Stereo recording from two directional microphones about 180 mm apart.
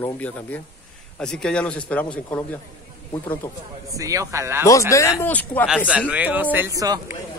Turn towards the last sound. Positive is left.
turn(degrees=-20)  # may be behind; listen again after turning